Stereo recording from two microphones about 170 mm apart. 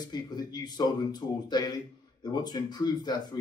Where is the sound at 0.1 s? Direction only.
25° left (ahead or behind).